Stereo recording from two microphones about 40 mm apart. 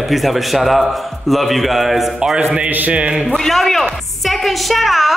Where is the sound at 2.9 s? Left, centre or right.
Right.